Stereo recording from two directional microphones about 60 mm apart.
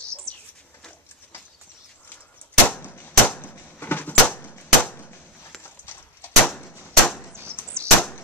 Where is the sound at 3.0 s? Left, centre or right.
Left.